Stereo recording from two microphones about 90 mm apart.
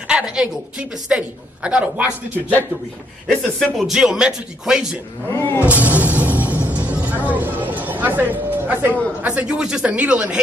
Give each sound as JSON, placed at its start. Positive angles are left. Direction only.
{"t": 0.1, "sound": "a woman's voice", "side_deg": -10}
{"t": 3.3, "sound": "speech", "side_deg": 5}
{"t": 5.3, "sound": "speech", "side_deg": 30}
{"t": 5.7, "sound": "music", "side_deg": -20}
{"t": 7.2, "sound": "a sound", "side_deg": -20}
{"t": 9.2, "sound": "a woman's voice", "side_deg": -15}